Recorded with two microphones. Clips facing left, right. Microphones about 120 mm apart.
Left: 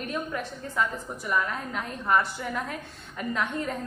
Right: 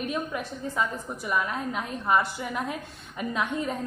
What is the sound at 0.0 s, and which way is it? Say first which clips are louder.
A woman's voice: right 1 dB; 10° right (ahead or behind).